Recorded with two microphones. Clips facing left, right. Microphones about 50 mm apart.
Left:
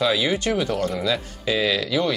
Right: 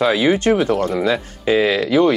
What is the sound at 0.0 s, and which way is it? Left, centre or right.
Speech, right.